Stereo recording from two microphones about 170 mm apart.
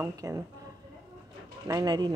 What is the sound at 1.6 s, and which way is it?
Speech, 20° right (ahead or behind).